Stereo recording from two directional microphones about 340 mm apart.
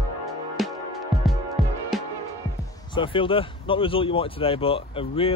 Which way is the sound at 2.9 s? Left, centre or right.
Centre.